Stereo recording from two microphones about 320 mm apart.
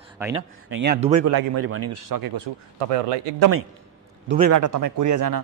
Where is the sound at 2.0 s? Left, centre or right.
Right.